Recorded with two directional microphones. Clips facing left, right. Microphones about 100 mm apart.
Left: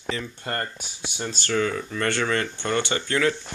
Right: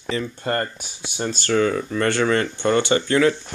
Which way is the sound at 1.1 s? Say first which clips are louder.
Right 5 dB; 45° right (ahead or behind).